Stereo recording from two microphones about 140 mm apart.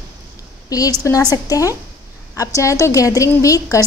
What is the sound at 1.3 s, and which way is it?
A woman's voice, 25° left (ahead or behind).